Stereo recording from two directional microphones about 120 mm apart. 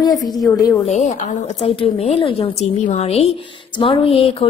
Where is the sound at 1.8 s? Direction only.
55° left (ahead or behind).